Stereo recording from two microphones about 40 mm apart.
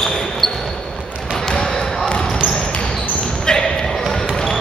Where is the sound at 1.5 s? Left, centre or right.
Left.